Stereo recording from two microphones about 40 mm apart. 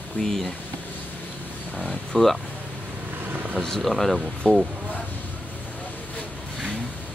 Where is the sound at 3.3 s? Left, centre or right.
Right.